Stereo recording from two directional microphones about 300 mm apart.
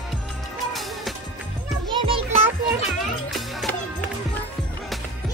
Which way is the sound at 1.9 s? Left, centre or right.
Centre.